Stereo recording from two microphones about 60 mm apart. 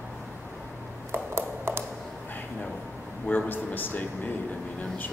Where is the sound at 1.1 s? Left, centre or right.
Right.